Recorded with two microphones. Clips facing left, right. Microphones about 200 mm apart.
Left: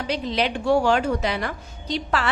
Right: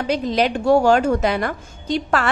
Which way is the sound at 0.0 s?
45° right (ahead or behind).